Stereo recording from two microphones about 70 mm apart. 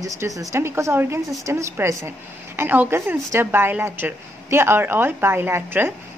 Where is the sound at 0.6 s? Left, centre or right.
Right.